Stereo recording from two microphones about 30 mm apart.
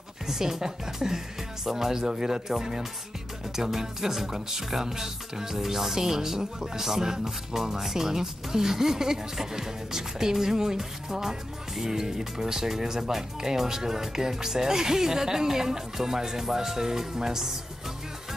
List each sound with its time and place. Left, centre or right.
0.3 s speech: centre